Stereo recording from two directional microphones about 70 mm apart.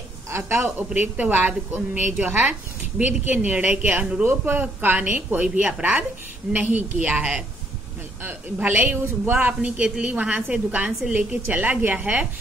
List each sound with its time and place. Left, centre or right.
0.3 s a woman's voice: right
0.6 s speech: right
8.2 s a woman's voice: right